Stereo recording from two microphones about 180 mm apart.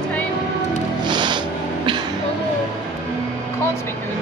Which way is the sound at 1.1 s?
25° right (ahead or behind).